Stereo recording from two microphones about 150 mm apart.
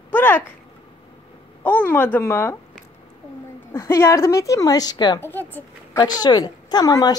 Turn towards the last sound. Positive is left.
turn(degrees=25)  # may be behind; listen again after turning